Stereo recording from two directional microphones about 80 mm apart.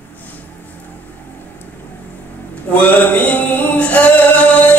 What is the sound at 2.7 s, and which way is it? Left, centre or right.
Chant, left.